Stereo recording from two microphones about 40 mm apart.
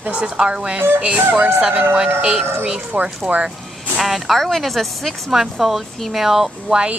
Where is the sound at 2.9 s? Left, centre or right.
Right.